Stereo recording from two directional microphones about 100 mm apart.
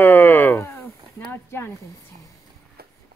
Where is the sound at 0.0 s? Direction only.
20° left (ahead or behind).